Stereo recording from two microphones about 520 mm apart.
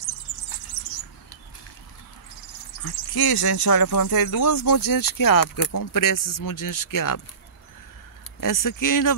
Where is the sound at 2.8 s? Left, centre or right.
Left.